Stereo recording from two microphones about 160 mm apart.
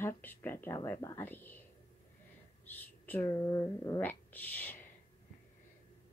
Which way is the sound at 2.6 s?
10° left (ahead or behind).